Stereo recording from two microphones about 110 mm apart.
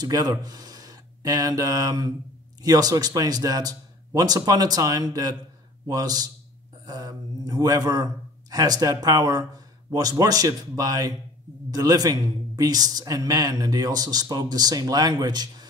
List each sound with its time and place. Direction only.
0.0 s a man's voice: 35° right (ahead or behind)